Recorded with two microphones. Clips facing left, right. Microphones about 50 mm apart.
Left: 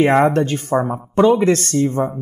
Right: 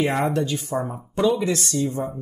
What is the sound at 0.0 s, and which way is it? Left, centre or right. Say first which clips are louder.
Speech: left 8 dB; left.